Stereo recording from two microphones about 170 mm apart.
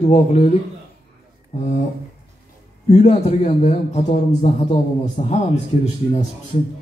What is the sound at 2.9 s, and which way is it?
A man's voice, 40° left (ahead or behind).